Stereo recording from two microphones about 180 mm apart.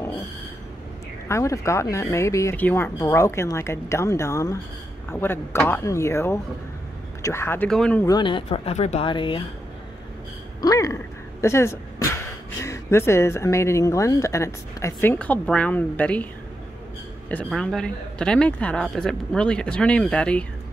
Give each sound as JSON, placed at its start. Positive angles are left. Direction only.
{"t": 1.3, "sound": "speech", "side_deg": 15}
{"t": 8.0, "sound": "speech", "side_deg": 25}
{"t": 10.6, "sound": "speech", "side_deg": 20}
{"t": 11.4, "sound": "a sound", "side_deg": 15}
{"t": 12.6, "sound": "speech", "side_deg": 15}
{"t": 17.3, "sound": "speech", "side_deg": 5}